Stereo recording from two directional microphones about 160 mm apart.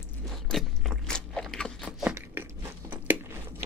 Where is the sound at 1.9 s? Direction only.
5° right (ahead or behind).